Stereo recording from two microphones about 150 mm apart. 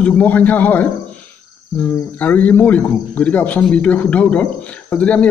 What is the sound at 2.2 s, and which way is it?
Speech, 10° left (ahead or behind).